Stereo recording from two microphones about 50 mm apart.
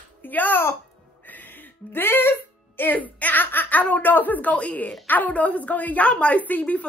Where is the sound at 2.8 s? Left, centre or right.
Left.